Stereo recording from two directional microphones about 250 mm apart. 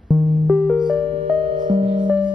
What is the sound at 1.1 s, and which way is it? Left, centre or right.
Music, right.